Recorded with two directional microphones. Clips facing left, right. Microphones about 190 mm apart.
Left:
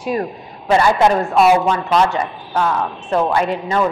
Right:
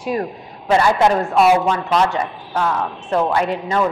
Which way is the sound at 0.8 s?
15° left (ahead or behind).